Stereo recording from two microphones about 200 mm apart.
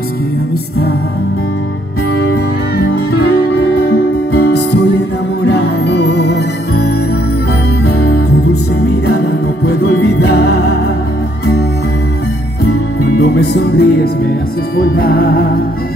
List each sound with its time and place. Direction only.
3.8 s music: 55° left (ahead or behind)
7.8 s music: 50° left (ahead or behind)
9.7 s music: 55° left (ahead or behind)
13.2 s music: 55° left (ahead or behind)